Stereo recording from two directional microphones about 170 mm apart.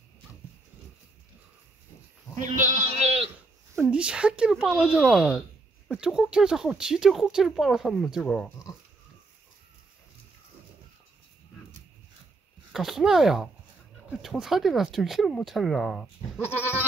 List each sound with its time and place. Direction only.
2.3 s goat: 50° right (ahead or behind)
3.9 s speech: 5° right (ahead or behind)
12.7 s speech: centre (ahead or behind)
16.3 s goat: 10° right (ahead or behind)